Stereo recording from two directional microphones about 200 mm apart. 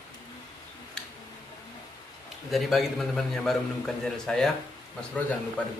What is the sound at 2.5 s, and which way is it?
A man's voice, centre (ahead or behind).